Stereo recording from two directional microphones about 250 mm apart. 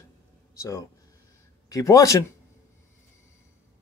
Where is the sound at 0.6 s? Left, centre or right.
Centre.